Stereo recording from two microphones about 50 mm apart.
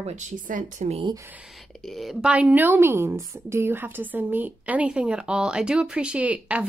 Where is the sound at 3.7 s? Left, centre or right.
Right.